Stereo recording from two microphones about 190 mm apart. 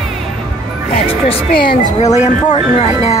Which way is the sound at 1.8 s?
35° left (ahead or behind).